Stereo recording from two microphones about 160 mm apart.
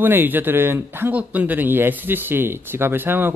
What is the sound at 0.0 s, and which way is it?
Speech, 10° right (ahead or behind).